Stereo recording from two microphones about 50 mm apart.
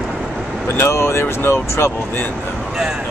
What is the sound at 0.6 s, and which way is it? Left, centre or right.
Speech, left.